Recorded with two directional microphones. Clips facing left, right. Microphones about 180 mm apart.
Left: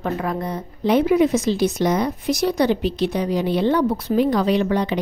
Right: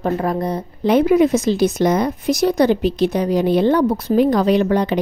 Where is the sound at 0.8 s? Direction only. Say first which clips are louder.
Right 3 dB; 50° right (ahead or behind).